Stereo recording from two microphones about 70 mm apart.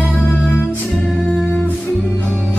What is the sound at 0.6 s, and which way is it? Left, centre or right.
Music, left.